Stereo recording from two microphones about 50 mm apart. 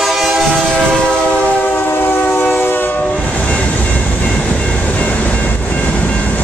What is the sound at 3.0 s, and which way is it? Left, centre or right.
Train, left.